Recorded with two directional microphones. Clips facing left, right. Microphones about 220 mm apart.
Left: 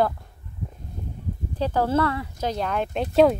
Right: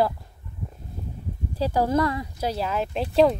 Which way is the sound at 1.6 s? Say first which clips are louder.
Even; 15° right (ahead or behind).